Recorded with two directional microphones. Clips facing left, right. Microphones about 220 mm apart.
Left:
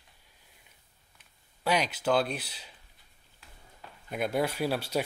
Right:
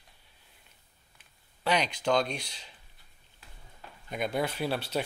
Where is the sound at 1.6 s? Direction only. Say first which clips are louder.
Even; 10° left (ahead or behind).